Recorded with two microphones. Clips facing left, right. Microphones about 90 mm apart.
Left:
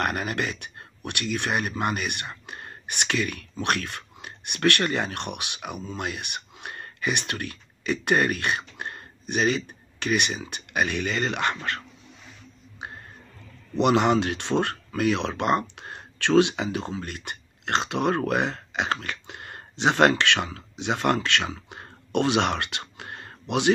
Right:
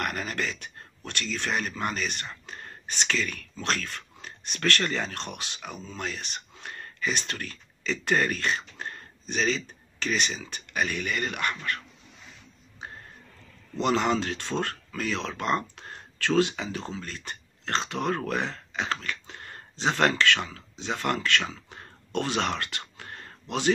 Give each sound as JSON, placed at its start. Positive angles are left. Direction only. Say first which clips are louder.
{"t": 0.0, "sound": "speech", "louder": "left 4 dB", "side_deg": 20}
{"t": 8.7, "sound": "a sound", "louder": "left 2 dB", "side_deg": 20}
{"t": 9.3, "sound": "speech", "louder": "left 4 dB", "side_deg": 15}
{"t": 13.7, "sound": "speech", "louder": "left 5 dB", "side_deg": 20}
{"t": 22.6, "sound": "whispering", "louder": "left 3 dB", "side_deg": 20}